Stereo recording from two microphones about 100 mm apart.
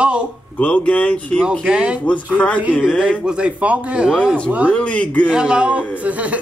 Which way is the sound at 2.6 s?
10° right (ahead or behind).